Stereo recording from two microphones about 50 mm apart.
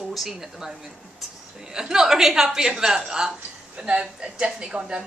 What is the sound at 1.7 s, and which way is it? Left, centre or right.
A woman's voice, centre.